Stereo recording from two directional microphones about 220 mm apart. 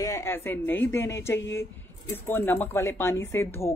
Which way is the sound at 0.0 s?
10° left (ahead or behind).